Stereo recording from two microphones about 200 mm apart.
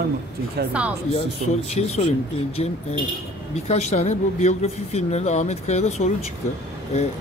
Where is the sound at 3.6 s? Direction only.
35° left (ahead or behind).